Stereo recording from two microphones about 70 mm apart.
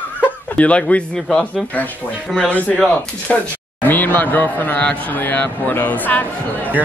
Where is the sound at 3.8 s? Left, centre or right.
Left.